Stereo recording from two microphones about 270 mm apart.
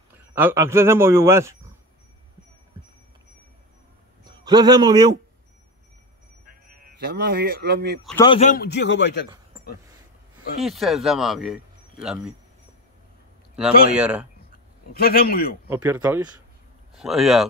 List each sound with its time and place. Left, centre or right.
0.3 s a man's voice: centre
4.2 s a man's voice: centre
7.1 s speech: right
8.2 s a man's voice: left
10.6 s speech: centre
13.9 s speech: centre
14.9 s a man's voice: left
15.7 s a man's voice: centre